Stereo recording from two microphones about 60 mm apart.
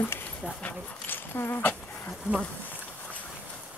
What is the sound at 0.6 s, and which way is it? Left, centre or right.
Speech, left.